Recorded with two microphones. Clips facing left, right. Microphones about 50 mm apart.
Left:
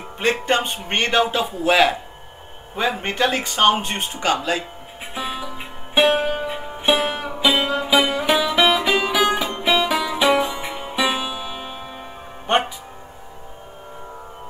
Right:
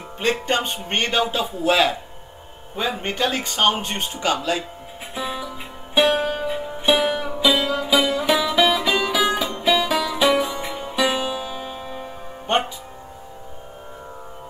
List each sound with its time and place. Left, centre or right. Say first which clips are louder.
0.2 s speech: left 2 dB; left
5.1 s music: even; left
12.4 s music: left 2 dB; left